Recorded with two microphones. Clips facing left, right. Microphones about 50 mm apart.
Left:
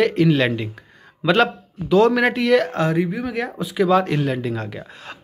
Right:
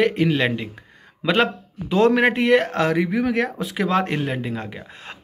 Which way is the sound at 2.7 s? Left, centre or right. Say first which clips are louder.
Even; right.